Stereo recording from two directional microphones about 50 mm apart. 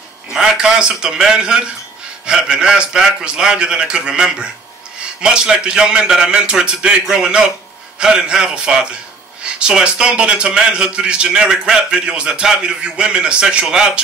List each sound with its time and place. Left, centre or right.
0.3 s a man's voice: centre